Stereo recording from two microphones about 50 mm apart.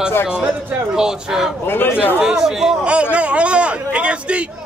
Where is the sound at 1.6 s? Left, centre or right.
Left.